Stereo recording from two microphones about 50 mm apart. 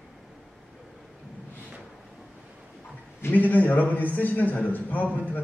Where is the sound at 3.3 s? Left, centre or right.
Left.